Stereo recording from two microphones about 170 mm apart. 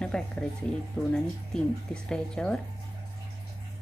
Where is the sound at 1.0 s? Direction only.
Centre (ahead or behind).